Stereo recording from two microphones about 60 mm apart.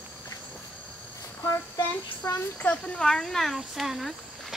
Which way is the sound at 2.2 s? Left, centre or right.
Left.